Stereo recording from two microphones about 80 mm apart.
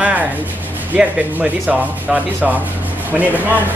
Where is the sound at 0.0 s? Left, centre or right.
Centre.